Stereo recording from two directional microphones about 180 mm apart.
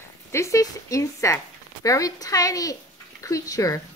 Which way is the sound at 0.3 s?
15° left (ahead or behind).